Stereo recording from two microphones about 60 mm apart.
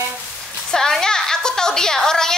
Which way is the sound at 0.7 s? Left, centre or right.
Centre.